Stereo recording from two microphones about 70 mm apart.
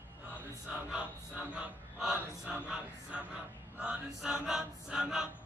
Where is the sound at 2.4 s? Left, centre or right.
Centre.